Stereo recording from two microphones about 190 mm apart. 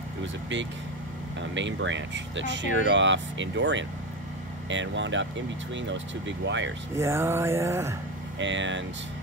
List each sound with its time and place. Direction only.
0.2 s speech: 75° right (ahead or behind)
7.0 s mantra: 15° right (ahead or behind)
8.4 s speech: 75° right (ahead or behind)